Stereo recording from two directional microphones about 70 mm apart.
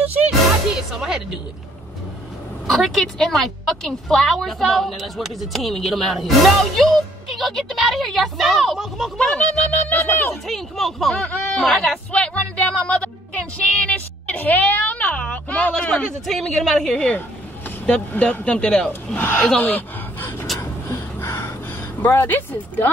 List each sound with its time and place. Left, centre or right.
0.0 s music: right
0.9 s speech: centre
2.6 s a woman's voice: centre
9.7 s speech: left
10.4 s a woman's voice: centre
11.1 s speech: centre
12.1 s a woman's voice: centre
19.1 s speech: left
19.5 s a sound: left
20.9 s a sound: left
22.0 s speech: left